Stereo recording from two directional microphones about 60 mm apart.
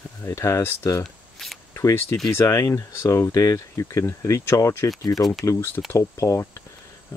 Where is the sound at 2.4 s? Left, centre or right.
Left.